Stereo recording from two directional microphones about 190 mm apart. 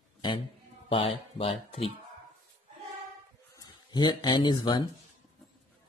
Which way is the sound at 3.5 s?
20° left (ahead or behind).